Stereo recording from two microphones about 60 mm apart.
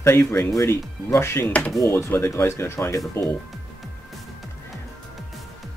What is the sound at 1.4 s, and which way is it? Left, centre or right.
Speech, left.